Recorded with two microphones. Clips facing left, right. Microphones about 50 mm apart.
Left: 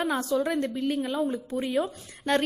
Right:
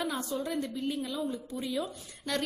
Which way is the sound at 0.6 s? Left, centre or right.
Left.